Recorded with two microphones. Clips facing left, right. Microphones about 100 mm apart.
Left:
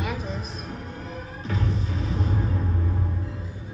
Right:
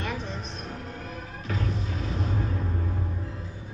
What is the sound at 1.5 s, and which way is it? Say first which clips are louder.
Music: left 2 dB; 30° left (ahead or behind).